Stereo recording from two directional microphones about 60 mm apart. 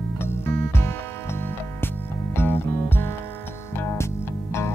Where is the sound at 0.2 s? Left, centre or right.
Left.